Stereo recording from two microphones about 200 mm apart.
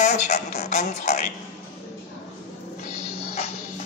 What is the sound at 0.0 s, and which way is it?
Speech, 35° left (ahead or behind).